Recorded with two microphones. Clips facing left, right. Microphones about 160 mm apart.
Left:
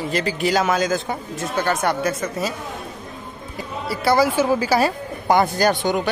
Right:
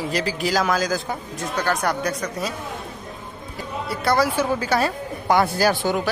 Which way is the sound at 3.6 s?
Centre (ahead or behind).